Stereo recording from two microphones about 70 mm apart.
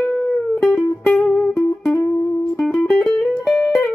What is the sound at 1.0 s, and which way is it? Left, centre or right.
Music, left.